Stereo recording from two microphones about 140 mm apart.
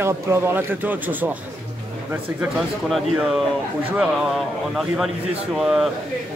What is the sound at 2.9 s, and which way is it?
Speech, centre (ahead or behind).